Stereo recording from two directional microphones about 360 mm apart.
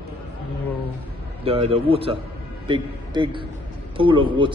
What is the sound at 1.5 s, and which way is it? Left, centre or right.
A man's voice, centre.